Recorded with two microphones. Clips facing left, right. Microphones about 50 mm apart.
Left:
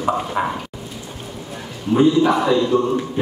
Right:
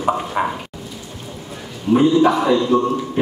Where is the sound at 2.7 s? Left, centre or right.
Right.